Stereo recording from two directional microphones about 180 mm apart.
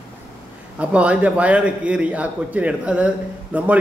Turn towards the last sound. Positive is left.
turn(degrees=-10)  # may be behind; listen again after turning